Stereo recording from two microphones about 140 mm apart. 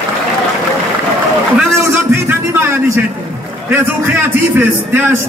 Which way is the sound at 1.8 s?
15° right (ahead or behind).